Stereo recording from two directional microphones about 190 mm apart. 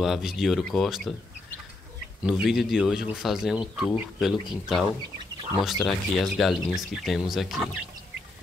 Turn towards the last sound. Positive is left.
turn(degrees=0)  # may be behind; listen again after turning